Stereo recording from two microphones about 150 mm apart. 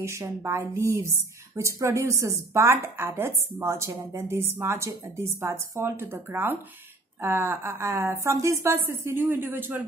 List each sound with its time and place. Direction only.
0.0 s a woman's voice: 20° right (ahead or behind)